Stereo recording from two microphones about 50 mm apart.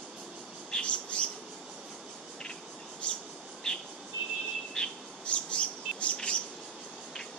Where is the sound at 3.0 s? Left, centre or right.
Left.